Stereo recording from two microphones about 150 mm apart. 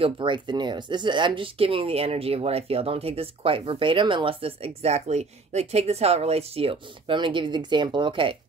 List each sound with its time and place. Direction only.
0.0 s speech: 35° right (ahead or behind)